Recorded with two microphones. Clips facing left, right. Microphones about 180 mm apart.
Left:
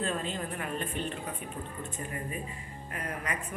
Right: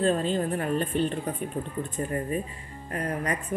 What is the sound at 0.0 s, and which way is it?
Speech, 35° right (ahead or behind).